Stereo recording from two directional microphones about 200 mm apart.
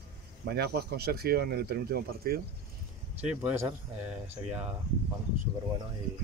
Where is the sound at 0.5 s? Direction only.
55° right (ahead or behind).